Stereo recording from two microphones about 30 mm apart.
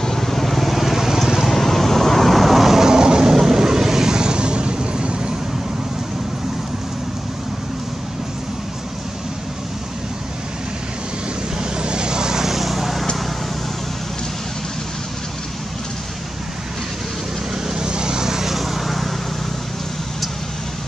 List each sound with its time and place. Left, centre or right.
0.0 s vehicle: centre
2.9 s vehicle: right
11.7 s vehicle: right; by 13.0 s centre
17.6 s vehicle: right; by 19.1 s centre